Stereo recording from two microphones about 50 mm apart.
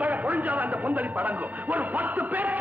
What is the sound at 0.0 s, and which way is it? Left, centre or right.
A man's voice, right.